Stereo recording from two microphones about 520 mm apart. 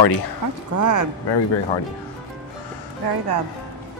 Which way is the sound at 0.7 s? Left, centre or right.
Right.